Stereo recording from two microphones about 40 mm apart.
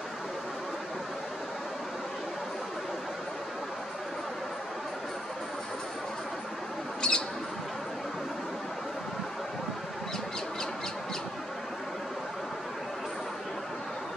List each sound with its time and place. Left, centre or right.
7.0 s bird: left